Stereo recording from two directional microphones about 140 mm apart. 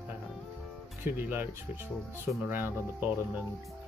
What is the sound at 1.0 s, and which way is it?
Speech, 15° right (ahead or behind).